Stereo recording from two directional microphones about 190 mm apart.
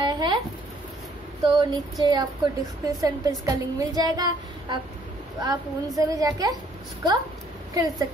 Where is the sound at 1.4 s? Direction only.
20° right (ahead or behind).